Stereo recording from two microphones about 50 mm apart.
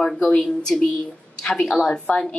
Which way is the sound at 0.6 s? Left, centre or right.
Centre.